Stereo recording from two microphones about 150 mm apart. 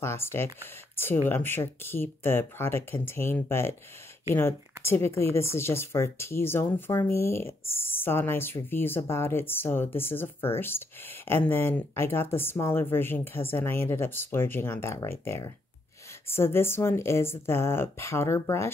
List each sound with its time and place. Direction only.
0.0 s speech: 15° left (ahead or behind)